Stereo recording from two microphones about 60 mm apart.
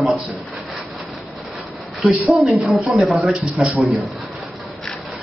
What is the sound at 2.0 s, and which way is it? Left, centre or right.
A man's voice, centre.